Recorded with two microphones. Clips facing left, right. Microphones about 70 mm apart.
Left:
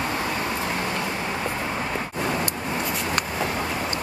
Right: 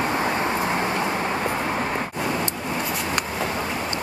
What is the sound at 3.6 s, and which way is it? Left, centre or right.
Vehicle, right.